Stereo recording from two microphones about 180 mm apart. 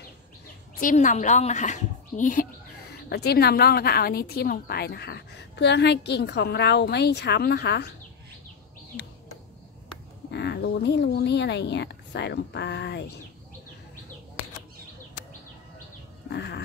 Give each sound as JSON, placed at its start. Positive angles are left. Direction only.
{"t": 0.7, "sound": "speech", "side_deg": 45}
{"t": 3.1, "sound": "a woman's voice", "side_deg": 65}
{"t": 10.3, "sound": "speech", "side_deg": 70}
{"t": 16.3, "sound": "goat", "side_deg": 65}